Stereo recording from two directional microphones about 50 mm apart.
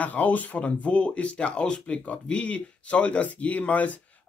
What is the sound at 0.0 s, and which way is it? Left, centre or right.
Speech, left.